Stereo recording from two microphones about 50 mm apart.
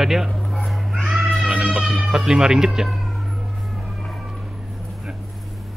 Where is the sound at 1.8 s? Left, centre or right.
Centre.